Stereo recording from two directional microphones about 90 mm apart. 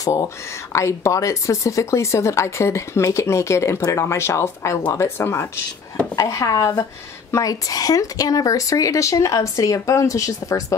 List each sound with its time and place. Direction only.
0.0 s speech: 40° left (ahead or behind)
6.1 s speech: 40° left (ahead or behind)